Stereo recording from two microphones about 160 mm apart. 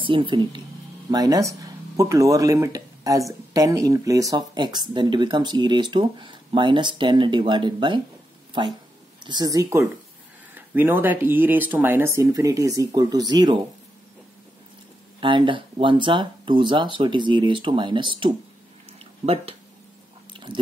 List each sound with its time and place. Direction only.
0.0 s speech: 35° right (ahead or behind)
15.1 s speech: 30° right (ahead or behind)
18.9 s a sound: 35° right (ahead or behind)
20.5 s speech: 30° right (ahead or behind)